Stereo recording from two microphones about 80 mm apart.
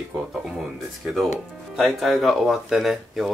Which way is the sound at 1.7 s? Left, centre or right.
Centre.